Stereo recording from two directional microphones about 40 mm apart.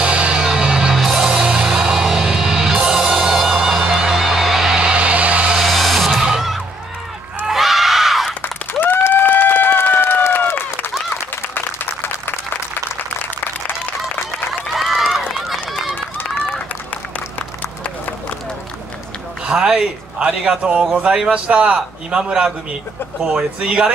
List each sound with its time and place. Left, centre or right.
0.0 s music: right; by 1.4 s centre
1.4 s music: right
1.7 s music: centre
4.9 s a sound: right
5.6 s music: centre
6.2 s a sound: centre
7.4 s screaming: centre
8.4 s applause: left
11.5 s a sound: left
13.2 s applause: left
14.7 s run: centre
15.9 s run: left
19.5 s a man's voice: centre